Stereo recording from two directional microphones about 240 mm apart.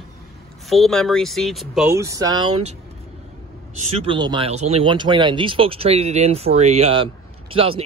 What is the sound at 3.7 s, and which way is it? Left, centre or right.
Speech, right.